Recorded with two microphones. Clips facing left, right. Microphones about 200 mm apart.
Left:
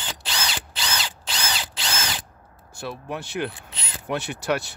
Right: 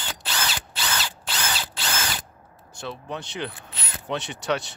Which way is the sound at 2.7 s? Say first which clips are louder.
Left 2 dB; 10° left (ahead or behind).